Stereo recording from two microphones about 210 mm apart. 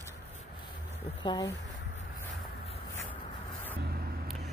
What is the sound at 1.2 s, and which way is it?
Speech, 20° left (ahead or behind).